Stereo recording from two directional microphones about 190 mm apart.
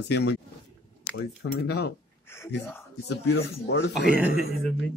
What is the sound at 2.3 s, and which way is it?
Speech, 15° left (ahead or behind).